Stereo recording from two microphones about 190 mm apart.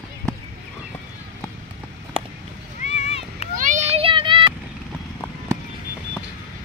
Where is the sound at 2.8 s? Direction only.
35° left (ahead or behind).